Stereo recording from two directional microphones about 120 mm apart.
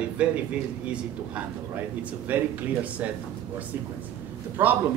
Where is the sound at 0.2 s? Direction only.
10° right (ahead or behind).